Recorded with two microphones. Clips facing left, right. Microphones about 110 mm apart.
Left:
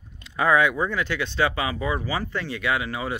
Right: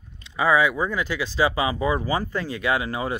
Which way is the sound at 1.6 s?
20° right (ahead or behind).